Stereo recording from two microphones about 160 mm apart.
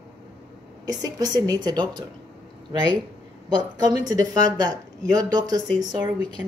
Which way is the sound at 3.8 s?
25° right (ahead or behind).